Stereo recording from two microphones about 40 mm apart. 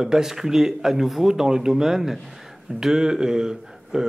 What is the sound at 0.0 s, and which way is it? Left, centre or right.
Speech, centre.